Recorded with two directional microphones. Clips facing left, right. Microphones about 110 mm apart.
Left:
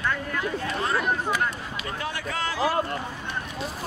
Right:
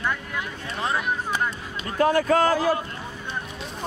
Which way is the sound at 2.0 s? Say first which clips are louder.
Right 14 dB; 45° right (ahead or behind).